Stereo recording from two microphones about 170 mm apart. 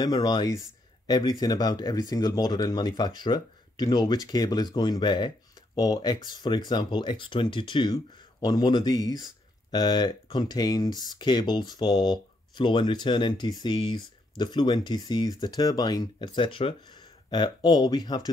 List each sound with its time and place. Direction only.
0.0 s speech: 25° left (ahead or behind)